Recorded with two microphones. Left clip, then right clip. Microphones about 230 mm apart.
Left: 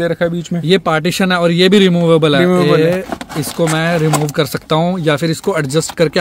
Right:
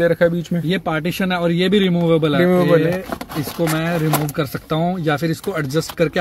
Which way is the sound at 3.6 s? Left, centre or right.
Left.